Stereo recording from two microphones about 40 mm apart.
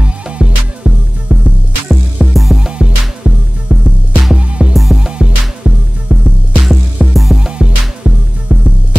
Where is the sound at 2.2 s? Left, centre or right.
Centre.